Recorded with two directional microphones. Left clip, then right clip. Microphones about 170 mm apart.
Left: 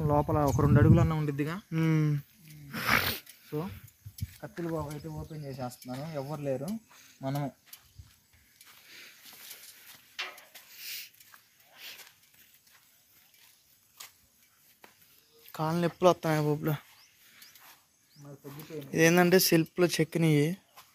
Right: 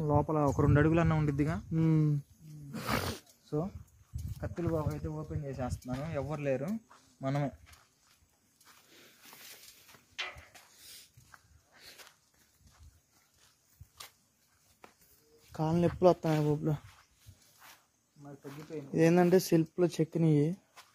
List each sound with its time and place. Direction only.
0.0 s speech: 40° left (ahead or behind); by 0.9 s 20° left (ahead or behind)
1.3 s speech: 55° right (ahead or behind)
1.7 s speech: centre (ahead or behind)
2.7 s a sound: centre (ahead or behind)
3.0 s dog: 20° right (ahead or behind)
4.4 s speech: centre (ahead or behind)
7.2 s speech: 15° right (ahead or behind)
15.5 s speech: 20° right (ahead or behind)
16.3 s speech: 10° left (ahead or behind)
18.9 s speech: 5° right (ahead or behind)